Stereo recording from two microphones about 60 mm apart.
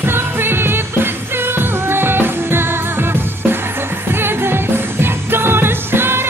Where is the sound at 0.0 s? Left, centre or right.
Right.